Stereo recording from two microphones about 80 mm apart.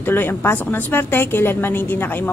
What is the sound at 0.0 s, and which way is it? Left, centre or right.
A woman's voice, left.